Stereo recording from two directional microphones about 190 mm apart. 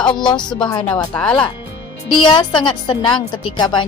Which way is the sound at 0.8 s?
10° left (ahead or behind).